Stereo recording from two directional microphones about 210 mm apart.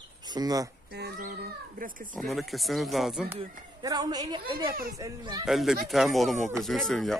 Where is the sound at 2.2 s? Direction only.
Centre (ahead or behind).